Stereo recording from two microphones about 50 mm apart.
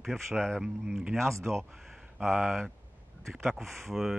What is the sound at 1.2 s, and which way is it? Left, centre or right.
Speech, right.